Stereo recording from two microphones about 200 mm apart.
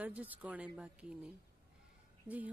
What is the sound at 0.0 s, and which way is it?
A woman's voice, 10° right (ahead or behind).